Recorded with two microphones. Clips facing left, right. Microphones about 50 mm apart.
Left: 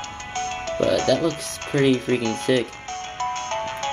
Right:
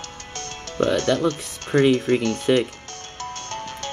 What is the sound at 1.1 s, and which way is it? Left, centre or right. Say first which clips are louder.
Speech: left 1 dB; right.